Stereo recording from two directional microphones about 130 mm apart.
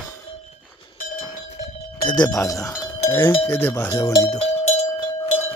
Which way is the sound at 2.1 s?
30° left (ahead or behind).